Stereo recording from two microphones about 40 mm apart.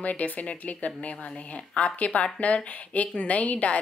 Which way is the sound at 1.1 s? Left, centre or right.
Left.